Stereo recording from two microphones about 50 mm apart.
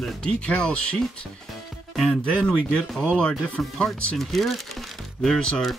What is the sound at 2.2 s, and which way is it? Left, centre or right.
Speech, left.